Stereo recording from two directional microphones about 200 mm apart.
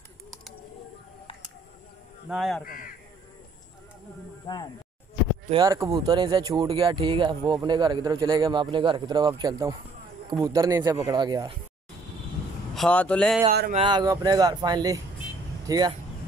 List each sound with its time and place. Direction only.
2.2 s speech: centre (ahead or behind)
2.6 s speech: 45° left (ahead or behind)
4.5 s speech: 20° left (ahead or behind)
5.5 s speech: 20° right (ahead or behind)
12.7 s speech: 5° left (ahead or behind)
13.8 s speech: 20° right (ahead or behind)